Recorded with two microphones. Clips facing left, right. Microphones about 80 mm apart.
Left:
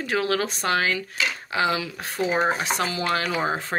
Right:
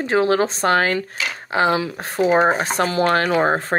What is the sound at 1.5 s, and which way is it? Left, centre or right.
Speech, right.